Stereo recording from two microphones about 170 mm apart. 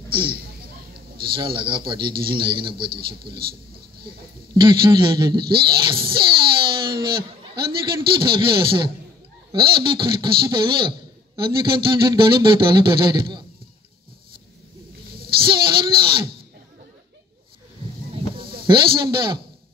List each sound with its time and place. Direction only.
0.1 s a man's voice: 30° right (ahead or behind)
4.6 s speech: 25° right (ahead or behind)
8.1 s a man's voice: 30° right (ahead or behind)
15.2 s a sound: 30° right (ahead or behind)
18.1 s a sound: 30° right (ahead or behind)
18.7 s a man's voice: 30° right (ahead or behind)